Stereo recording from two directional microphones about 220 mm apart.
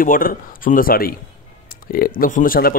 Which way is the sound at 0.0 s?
40° left (ahead or behind).